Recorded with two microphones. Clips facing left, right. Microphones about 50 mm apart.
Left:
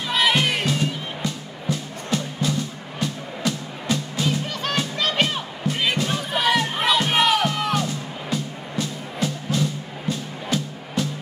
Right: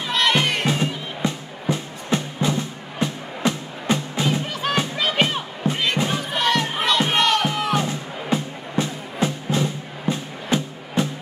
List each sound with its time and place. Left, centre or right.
0.1 s music: centre
0.7 s music: right
4.9 s music: centre
5.9 s crowd: right
6.3 s crowd: centre
7.4 s music: centre
7.7 s music: right